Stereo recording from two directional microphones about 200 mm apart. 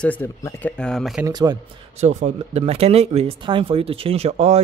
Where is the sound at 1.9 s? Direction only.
35° right (ahead or behind).